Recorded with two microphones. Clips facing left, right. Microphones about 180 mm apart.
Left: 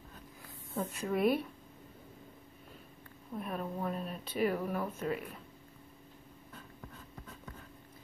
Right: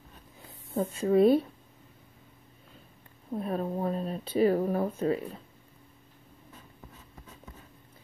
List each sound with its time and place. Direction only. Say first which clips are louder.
0.7 s speech: right 10 dB; 30° right (ahead or behind)
3.3 s speech: right 7 dB; 30° right (ahead or behind)